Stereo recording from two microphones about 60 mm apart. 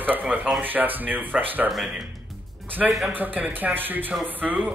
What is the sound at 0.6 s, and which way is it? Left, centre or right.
Speech, right.